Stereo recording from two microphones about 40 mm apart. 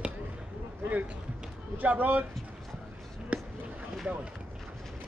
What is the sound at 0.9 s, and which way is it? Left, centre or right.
Speech, right.